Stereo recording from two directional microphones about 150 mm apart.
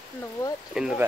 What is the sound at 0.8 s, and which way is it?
Speech, 5° right (ahead or behind).